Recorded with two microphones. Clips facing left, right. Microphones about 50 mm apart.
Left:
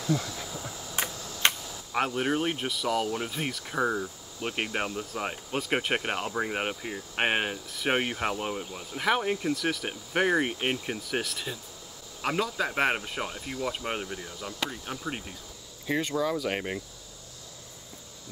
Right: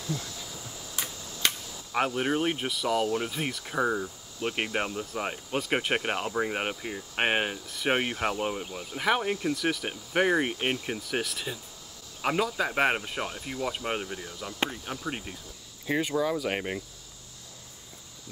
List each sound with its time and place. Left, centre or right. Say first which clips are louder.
0.0 s cricket: left 6 dB; left
1.4 s a sound: left 3 dB; left
1.9 s speech: even; centre